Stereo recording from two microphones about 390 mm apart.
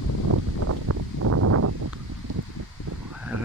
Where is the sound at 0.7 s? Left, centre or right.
Right.